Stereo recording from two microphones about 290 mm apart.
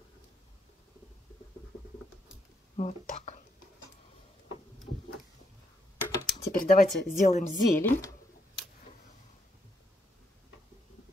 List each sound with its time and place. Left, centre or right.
2.7 s speech: left
6.1 s computer keyboard: centre
6.6 s speech: left
7.7 s speech: centre